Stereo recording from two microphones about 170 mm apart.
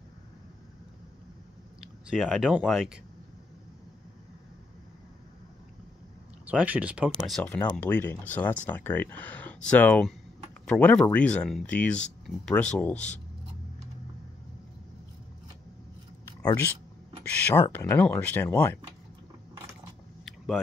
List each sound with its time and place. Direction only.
2.0 s speech: centre (ahead or behind)
6.4 s speech: 10° right (ahead or behind)
7.2 s speech: 5° left (ahead or behind)
17.3 s speech: 10° left (ahead or behind)
20.2 s a sound: centre (ahead or behind)